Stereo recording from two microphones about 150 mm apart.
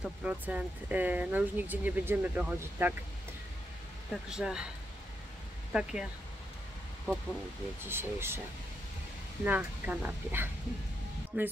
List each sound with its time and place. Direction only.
0.0 s speech: 10° right (ahead or behind)
4.1 s speech: 5° right (ahead or behind)
5.7 s speech: 5° right (ahead or behind)
7.8 s speech: 15° right (ahead or behind)
9.4 s speech: 10° right (ahead or behind)